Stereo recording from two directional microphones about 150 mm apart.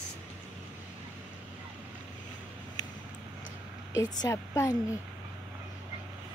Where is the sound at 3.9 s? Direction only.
20° left (ahead or behind).